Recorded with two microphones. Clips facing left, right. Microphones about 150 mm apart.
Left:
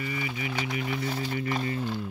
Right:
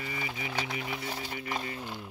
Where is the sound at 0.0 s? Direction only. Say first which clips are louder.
Left 4 dB; 30° right (ahead or behind).